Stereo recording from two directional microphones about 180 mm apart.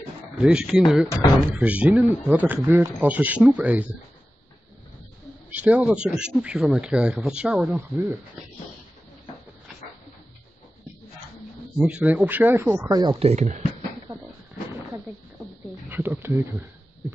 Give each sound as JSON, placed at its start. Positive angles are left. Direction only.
{"t": 0.4, "sound": "speech", "side_deg": -5}
{"t": 5.5, "sound": "speech", "side_deg": -10}
{"t": 11.8, "sound": "speech", "side_deg": -10}
{"t": 13.2, "sound": "speech", "side_deg": -40}
{"t": 15.9, "sound": "a sound", "side_deg": -10}